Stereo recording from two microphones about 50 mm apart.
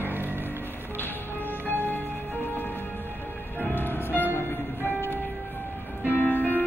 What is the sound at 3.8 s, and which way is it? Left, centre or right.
Music, left.